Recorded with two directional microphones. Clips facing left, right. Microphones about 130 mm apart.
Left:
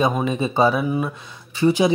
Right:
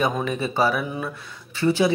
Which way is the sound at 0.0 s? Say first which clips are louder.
Left 3 dB; 20° left (ahead or behind).